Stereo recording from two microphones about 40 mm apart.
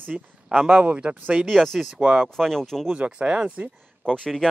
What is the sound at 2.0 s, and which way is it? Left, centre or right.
Speech, right.